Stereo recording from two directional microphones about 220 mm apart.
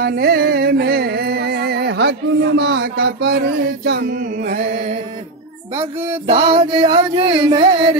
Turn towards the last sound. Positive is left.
turn(degrees=-20)  # may be behind; listen again after turning